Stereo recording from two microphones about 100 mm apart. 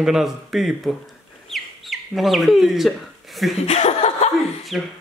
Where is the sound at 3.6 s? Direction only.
90° left.